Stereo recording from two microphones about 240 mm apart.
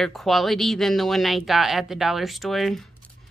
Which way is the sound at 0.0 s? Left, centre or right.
Centre.